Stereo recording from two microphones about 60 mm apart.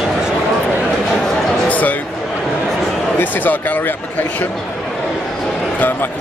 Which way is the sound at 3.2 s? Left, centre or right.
Left.